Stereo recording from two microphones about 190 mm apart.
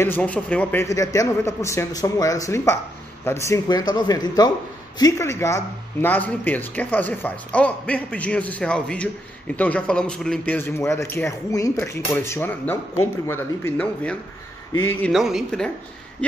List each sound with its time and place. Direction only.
0.0 s a man's voice: 10° left (ahead or behind)